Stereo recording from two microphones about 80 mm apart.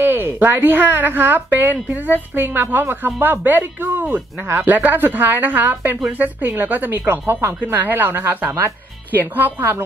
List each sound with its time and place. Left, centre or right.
0.0 s a woman's voice: right